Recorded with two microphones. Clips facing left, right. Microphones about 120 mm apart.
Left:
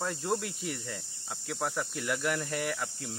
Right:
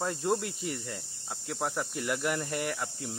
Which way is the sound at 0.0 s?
5° right (ahead or behind).